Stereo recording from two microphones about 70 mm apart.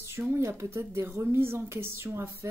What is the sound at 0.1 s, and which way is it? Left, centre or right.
Speech, right.